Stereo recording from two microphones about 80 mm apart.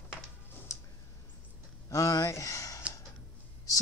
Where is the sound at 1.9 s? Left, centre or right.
Left.